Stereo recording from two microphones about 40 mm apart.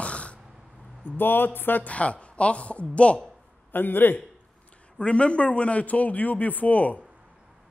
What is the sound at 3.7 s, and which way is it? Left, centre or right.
Speech, left.